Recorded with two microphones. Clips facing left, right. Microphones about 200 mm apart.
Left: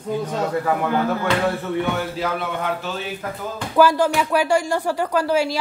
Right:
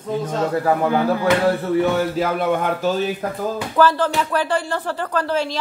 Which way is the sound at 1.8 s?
45° right (ahead or behind).